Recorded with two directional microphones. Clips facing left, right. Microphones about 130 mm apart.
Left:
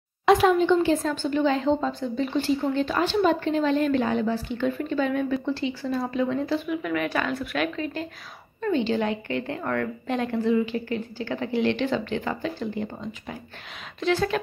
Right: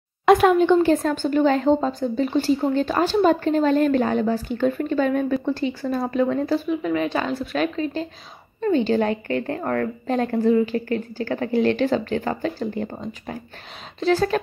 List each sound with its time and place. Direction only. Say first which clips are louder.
0.2 s speech: right 3 dB; 55° right (ahead or behind); by 8.1 s 30° right (ahead or behind)
8.6 s a woman's voice: right 4 dB; 40° right (ahead or behind)